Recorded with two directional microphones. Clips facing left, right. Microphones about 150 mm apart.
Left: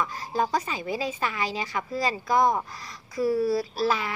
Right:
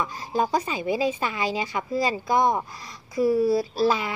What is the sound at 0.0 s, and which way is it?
Speech, 25° right (ahead or behind).